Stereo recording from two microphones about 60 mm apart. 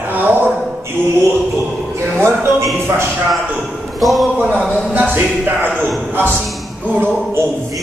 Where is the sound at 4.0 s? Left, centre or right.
Centre.